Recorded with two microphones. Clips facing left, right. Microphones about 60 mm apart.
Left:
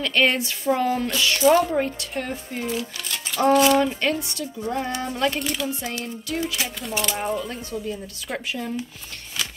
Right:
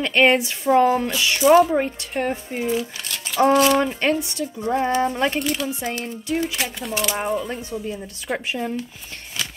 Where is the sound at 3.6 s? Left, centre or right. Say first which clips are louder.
Left 2 dB; centre.